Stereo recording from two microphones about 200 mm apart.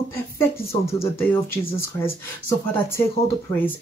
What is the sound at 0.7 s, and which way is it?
Speech, 30° left (ahead or behind).